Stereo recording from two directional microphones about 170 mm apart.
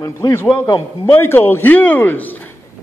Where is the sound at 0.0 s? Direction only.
15° left (ahead or behind).